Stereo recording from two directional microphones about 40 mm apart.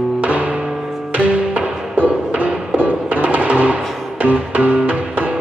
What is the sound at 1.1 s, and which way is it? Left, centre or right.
Music, right.